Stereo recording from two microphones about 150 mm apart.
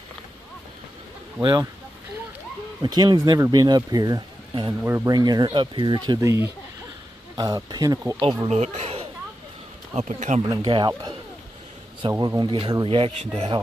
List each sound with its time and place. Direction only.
1.4 s speech: 30° right (ahead or behind)
2.8 s speech: 25° right (ahead or behind)
4.8 s speech: 15° right (ahead or behind)
5.1 s speech: 30° right (ahead or behind)
8.2 s speech: 40° right (ahead or behind)
10.4 s speech: 30° right (ahead or behind)